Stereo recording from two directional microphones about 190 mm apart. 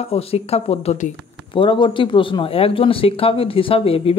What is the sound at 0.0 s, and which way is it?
Speech, 30° left (ahead or behind).